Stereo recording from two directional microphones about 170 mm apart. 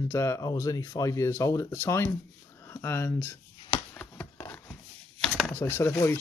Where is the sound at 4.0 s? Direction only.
10° left (ahead or behind).